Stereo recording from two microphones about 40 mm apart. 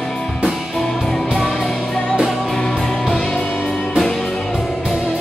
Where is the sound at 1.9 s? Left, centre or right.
Left.